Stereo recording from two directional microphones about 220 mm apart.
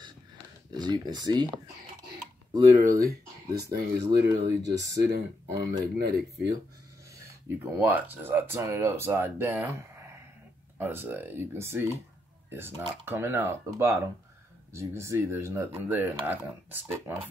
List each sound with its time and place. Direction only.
0.7 s speech: 20° right (ahead or behind)
2.7 s speech: 35° right (ahead or behind)
7.8 s speech: 10° right (ahead or behind)
10.8 s speech: 10° right (ahead or behind)